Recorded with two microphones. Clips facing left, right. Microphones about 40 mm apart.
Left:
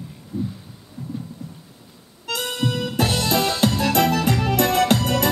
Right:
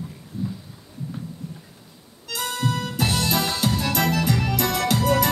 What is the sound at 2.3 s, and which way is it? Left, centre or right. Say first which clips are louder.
Music: left 2 dB; left.